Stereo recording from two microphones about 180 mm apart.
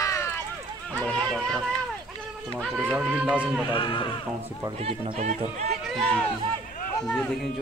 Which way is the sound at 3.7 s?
25° left (ahead or behind).